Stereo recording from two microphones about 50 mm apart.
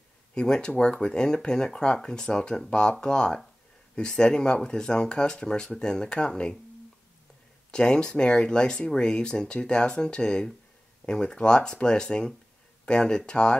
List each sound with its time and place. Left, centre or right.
0.3 s speech: centre
7.7 s speech: centre